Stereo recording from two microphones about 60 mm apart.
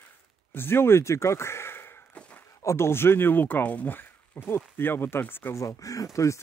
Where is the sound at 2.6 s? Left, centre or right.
Left.